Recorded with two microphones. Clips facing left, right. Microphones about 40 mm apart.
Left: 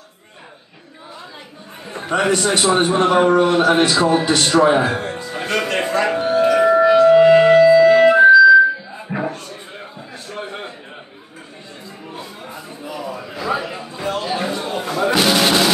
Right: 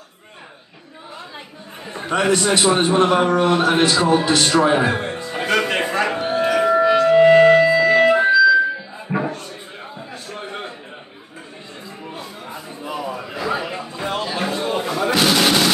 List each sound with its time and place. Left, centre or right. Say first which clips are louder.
1.9 s a man's voice: even; centre
4.8 s music: even; centre
9.1 s a sound: right 1 dB; centre
13.0 s a sound: left 1 dB; centre
14.5 s chatter: right 2 dB; centre
14.9 s music: left 3 dB; centre